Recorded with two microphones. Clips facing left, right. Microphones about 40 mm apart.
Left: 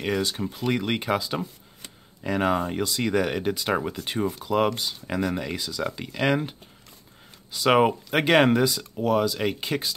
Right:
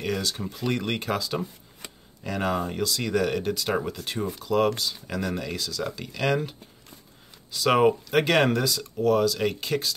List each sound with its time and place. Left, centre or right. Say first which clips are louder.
0.0 s speech: left 3 dB; centre
7.5 s speech: left 1 dB; centre